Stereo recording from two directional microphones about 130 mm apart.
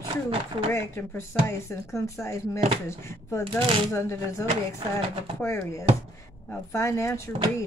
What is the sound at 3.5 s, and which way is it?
Speech, 40° right (ahead or behind).